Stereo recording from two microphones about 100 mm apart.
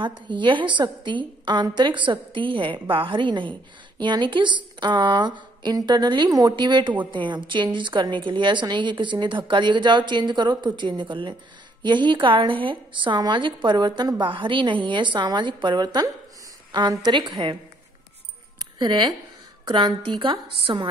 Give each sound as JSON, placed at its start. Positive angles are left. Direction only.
{"t": 0.3, "sound": "a woman's voice", "side_deg": -55}
{"t": 17.1, "sound": "a woman's voice", "side_deg": -50}
{"t": 18.8, "sound": "a woman's voice", "side_deg": -50}